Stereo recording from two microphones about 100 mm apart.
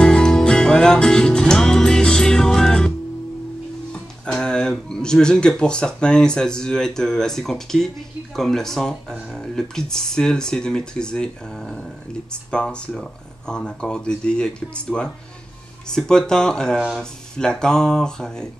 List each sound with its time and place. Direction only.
0.0 s music: 10° left (ahead or behind)
3.9 s speech: 10° left (ahead or behind)